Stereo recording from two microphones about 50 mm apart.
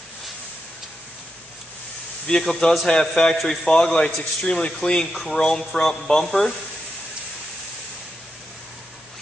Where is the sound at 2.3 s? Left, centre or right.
Left.